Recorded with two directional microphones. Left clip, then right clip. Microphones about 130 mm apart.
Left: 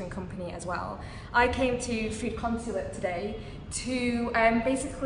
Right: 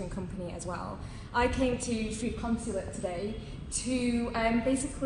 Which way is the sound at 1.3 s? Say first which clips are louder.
Left 4 dB; 15° left (ahead or behind).